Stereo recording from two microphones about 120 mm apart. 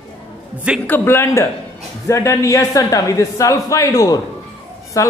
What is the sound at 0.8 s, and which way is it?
A man's voice, 20° left (ahead or behind).